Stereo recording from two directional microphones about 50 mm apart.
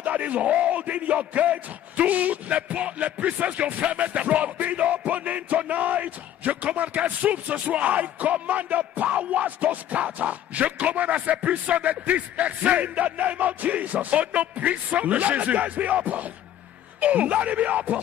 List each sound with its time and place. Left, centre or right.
0.0 s speech: right